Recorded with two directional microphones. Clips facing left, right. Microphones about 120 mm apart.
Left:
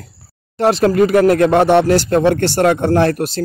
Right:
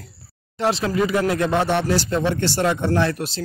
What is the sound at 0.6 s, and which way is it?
Speech, 55° left (ahead or behind).